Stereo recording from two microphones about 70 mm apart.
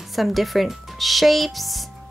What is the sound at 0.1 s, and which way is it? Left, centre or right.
Speech, centre.